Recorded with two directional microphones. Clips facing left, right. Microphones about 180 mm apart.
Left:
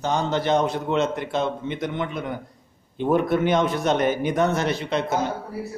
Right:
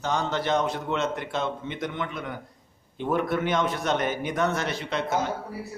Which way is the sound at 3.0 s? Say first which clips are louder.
Left 5 dB; 25° left (ahead or behind).